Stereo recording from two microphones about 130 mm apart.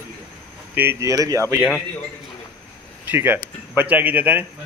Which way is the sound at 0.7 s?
15° right (ahead or behind).